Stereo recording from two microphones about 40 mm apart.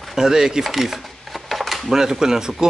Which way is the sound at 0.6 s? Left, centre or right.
Centre.